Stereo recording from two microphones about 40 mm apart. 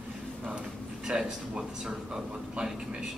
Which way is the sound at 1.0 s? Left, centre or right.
Centre.